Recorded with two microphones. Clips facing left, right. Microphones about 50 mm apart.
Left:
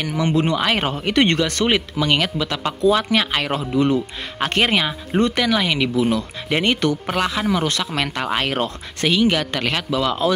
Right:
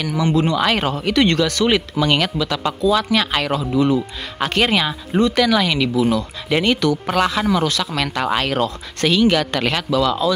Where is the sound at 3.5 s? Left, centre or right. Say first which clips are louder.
Right 2 dB; left.